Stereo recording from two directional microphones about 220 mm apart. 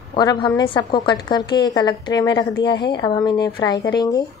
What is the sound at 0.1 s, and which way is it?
A woman's voice, 20° left (ahead or behind).